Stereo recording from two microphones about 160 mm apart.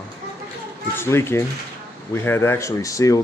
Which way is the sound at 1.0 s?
15° left (ahead or behind).